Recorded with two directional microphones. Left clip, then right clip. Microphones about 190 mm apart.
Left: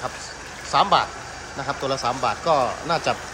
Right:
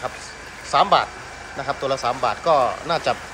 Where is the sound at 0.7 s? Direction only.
15° left (ahead or behind).